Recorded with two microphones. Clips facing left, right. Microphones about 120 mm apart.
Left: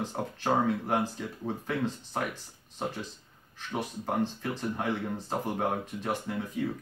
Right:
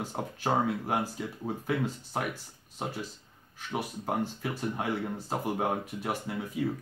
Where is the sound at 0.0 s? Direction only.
10° right (ahead or behind).